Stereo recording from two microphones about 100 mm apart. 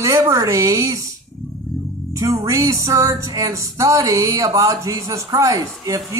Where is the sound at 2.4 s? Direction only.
35° right (ahead or behind).